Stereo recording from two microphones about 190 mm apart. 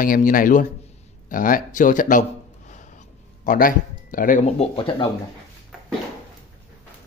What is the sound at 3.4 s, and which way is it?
Speech, 45° left (ahead or behind).